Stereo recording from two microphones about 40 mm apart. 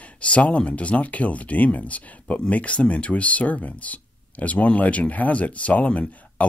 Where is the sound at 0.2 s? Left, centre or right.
Left.